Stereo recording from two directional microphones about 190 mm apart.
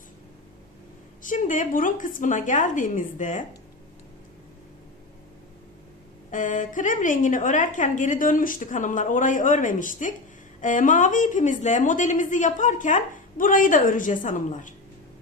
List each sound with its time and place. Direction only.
1.2 s a woman's voice: 45° left (ahead or behind)
6.3 s a woman's voice: 40° left (ahead or behind)